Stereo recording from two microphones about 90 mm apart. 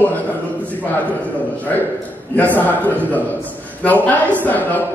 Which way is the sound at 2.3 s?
20° left (ahead or behind).